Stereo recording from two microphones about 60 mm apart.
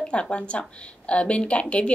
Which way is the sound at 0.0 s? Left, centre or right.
Centre.